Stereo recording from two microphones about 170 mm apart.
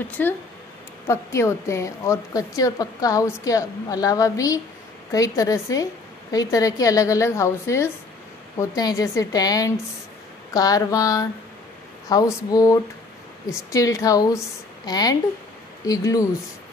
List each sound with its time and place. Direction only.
0.2 s a woman's voice: 10° left (ahead or behind)